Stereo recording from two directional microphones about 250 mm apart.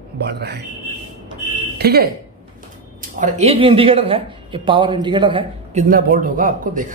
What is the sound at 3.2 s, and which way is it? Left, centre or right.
Speech, right.